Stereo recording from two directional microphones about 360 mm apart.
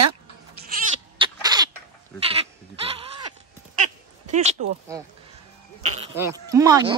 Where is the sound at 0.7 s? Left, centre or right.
Centre.